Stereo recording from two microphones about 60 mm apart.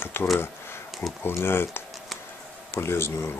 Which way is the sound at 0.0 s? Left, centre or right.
Left.